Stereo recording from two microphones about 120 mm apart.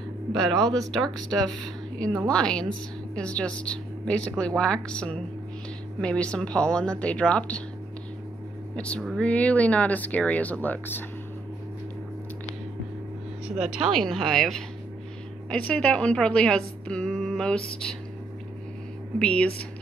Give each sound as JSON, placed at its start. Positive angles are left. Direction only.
{"t": 0.3, "sound": "a woman's voice", "side_deg": 5}
{"t": 2.2, "sound": "a woman's voice", "side_deg": 10}
{"t": 8.7, "sound": "a woman's voice", "side_deg": 10}
{"t": 13.6, "sound": "a woman's voice", "side_deg": -5}
{"t": 19.1, "sound": "a woman's voice", "side_deg": 10}